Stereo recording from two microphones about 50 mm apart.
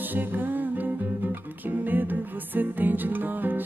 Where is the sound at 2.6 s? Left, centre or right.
Right.